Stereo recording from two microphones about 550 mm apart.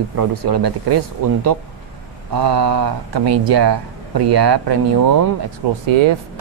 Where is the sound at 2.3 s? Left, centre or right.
Right.